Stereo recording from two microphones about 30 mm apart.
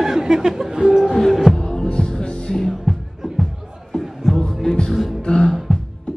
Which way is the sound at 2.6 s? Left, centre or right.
Centre.